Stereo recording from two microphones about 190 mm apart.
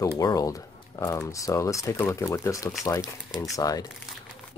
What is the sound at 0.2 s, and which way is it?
Speech, 20° left (ahead or behind).